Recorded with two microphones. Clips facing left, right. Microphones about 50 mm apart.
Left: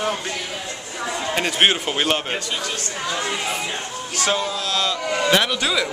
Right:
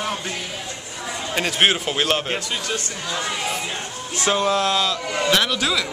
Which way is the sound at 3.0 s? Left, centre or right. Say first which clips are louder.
Left 2 dB; left.